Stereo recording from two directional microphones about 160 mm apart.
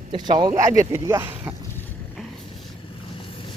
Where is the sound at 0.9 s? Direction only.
15° right (ahead or behind).